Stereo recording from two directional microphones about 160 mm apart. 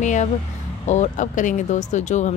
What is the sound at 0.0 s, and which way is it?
Speech, 50° left (ahead or behind).